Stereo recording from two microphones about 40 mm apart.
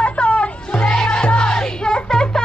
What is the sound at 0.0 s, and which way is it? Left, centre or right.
Music, left.